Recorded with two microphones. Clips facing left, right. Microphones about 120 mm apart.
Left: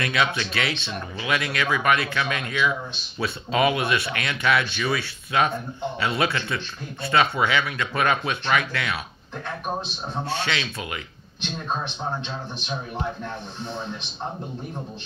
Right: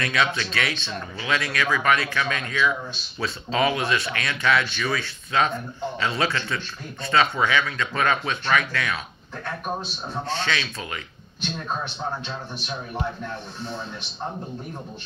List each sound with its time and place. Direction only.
0.0 s speech: 20° left (ahead or behind)
10.4 s speech: 20° left (ahead or behind)